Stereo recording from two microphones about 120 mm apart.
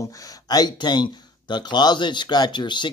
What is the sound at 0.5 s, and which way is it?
Speech, 35° left (ahead or behind).